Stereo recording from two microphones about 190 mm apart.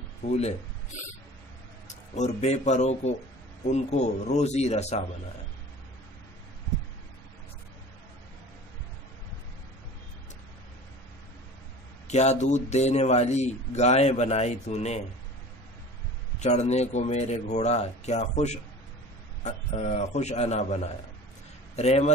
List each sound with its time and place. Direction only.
0.3 s a man's voice: 35° left (ahead or behind)
1.9 s a man's voice: 35° left (ahead or behind)
12.1 s a man's voice: 35° left (ahead or behind)
16.3 s a man's voice: 35° left (ahead or behind)